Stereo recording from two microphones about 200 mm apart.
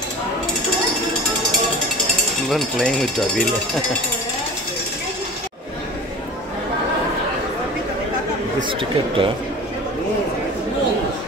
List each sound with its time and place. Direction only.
2.5 s speech: centre (ahead or behind)
8.6 s speech: 25° right (ahead or behind)